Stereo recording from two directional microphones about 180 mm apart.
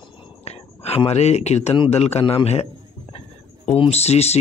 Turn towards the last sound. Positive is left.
turn(degrees=35)  # may be behind; listen again after turning